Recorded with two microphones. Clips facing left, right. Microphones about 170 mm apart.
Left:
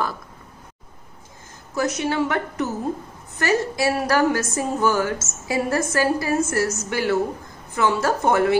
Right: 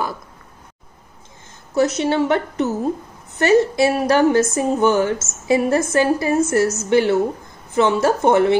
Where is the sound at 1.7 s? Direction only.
25° right (ahead or behind).